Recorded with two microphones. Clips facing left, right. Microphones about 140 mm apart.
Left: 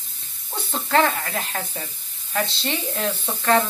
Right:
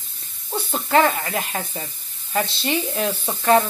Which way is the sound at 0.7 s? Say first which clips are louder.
Right 2 dB; 10° right (ahead or behind).